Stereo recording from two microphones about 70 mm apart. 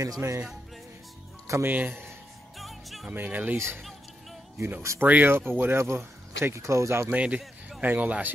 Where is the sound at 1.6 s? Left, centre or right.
Right.